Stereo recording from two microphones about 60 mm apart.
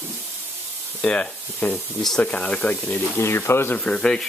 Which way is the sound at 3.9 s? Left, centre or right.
Centre.